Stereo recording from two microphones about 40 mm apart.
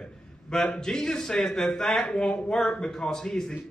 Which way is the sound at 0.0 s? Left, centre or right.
Centre.